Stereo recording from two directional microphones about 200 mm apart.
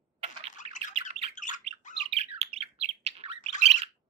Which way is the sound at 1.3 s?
40° left (ahead or behind).